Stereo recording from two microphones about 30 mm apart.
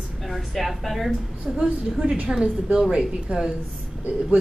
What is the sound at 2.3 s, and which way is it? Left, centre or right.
Speech, right.